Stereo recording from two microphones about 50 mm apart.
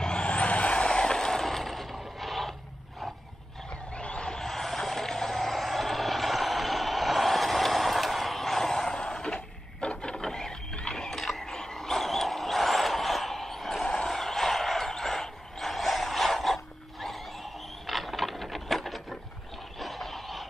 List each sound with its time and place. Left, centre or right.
0.0 s vehicle: left; by 2.5 s centre
4.0 s a sound: centre
17.8 s mechanisms: centre
19.8 s vehicle: centre